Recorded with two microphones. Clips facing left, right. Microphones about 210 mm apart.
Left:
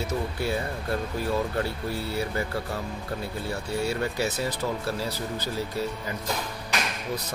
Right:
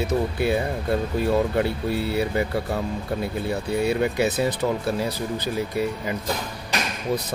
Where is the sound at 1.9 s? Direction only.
65° right (ahead or behind).